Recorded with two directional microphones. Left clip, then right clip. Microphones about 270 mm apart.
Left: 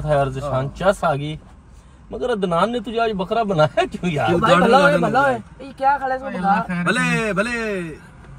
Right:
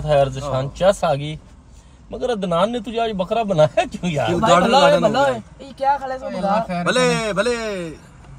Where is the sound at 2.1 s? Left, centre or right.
Centre.